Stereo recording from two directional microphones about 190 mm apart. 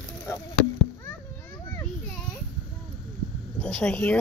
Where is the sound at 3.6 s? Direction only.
5° left (ahead or behind).